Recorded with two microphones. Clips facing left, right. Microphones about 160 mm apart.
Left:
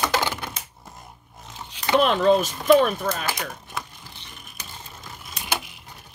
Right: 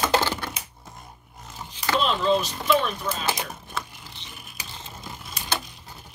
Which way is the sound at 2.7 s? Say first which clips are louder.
Left 6 dB; 50° left (ahead or behind).